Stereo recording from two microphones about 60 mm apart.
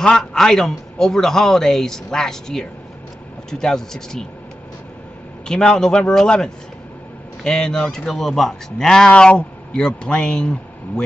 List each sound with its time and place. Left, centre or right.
0.0 s a man's voice: centre
5.5 s a man's voice: centre